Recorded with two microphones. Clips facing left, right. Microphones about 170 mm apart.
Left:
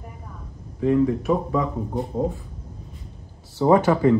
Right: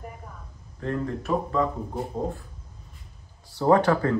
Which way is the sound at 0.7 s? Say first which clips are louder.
Left 10 dB; 10° left (ahead or behind).